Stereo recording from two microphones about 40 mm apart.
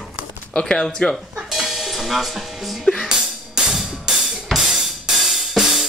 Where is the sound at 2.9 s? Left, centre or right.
Left.